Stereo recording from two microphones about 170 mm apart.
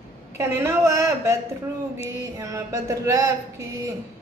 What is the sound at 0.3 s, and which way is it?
A woman's voice, 15° right (ahead or behind).